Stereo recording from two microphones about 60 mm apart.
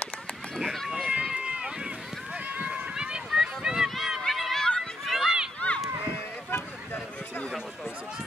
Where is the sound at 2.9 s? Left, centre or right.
Centre.